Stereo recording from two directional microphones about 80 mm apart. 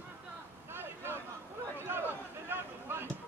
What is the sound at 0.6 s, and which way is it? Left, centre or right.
Vehicle, right.